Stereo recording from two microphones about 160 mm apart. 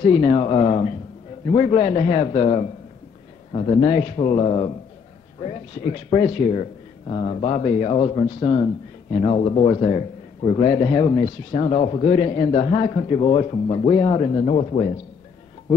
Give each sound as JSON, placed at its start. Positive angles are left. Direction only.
{"t": 0.0, "sound": "a man's voice", "side_deg": 40}